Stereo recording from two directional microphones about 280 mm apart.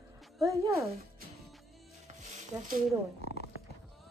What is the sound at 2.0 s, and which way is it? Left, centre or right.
Sizzle, right.